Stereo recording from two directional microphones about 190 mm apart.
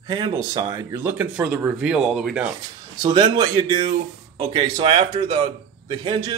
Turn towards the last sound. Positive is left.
turn(degrees=-25)  # may be behind; listen again after turning